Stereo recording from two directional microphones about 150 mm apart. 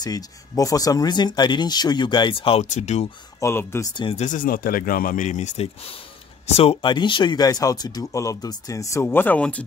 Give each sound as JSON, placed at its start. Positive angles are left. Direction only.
{"t": 0.0, "sound": "speech", "side_deg": 25}
{"t": 2.6, "sound": "speech", "side_deg": 50}
{"t": 3.3, "sound": "speech", "side_deg": 15}
{"t": 3.9, "sound": "speech", "side_deg": 35}
{"t": 4.2, "sound": "speech", "side_deg": 65}